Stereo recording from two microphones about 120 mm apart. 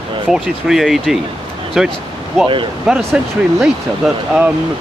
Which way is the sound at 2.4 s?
45° right (ahead or behind).